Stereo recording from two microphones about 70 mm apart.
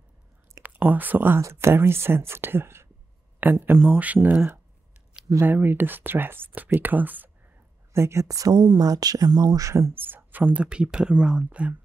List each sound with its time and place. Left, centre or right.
0.6 s speech: right
5.4 s speech: right
7.9 s speech: right
10.6 s speech: centre